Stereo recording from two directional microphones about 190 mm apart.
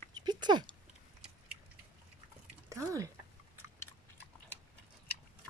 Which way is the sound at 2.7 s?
15° right (ahead or behind).